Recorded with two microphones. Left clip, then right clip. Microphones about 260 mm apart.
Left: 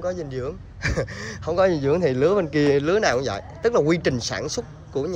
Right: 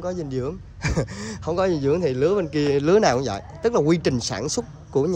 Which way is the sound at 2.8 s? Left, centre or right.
Right.